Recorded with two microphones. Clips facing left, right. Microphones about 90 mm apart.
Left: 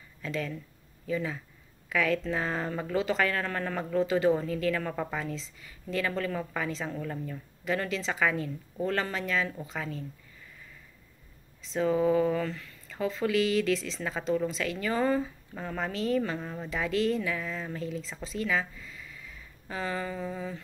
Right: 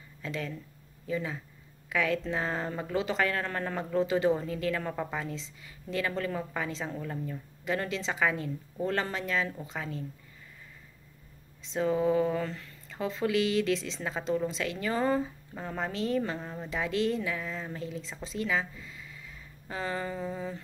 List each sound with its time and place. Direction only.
0.2 s a woman's voice: 20° right (ahead or behind)
7.7 s a woman's voice: 25° right (ahead or behind)
11.7 s a woman's voice: 20° right (ahead or behind)
15.5 s speech: 15° right (ahead or behind)
15.9 s a woman's voice: 25° right (ahead or behind)
16.3 s speech: 5° right (ahead or behind)
16.6 s a woman's voice: 20° right (ahead or behind)